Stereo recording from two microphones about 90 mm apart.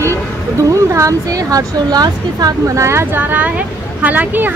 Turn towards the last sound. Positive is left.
turn(degrees=-20)  # may be behind; listen again after turning